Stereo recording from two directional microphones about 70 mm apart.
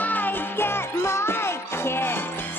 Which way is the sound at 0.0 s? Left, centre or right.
Left.